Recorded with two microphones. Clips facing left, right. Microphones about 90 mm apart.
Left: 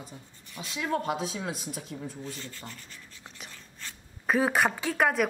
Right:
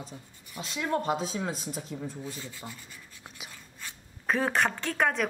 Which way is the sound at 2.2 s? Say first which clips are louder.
Right 1 dB; 10° right (ahead or behind).